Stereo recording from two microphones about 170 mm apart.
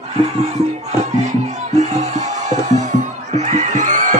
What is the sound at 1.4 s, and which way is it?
Music, 45° right (ahead or behind).